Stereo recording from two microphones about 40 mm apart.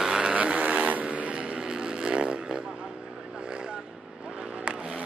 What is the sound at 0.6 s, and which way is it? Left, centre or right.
Vehicle, right.